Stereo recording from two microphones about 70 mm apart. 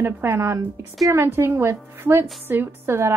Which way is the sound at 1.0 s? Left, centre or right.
Right.